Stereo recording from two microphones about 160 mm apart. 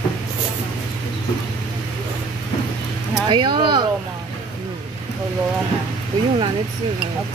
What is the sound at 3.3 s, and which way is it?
Speech, 30° right (ahead or behind).